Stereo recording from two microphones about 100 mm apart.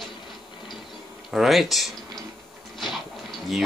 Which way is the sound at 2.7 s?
Centre (ahead or behind).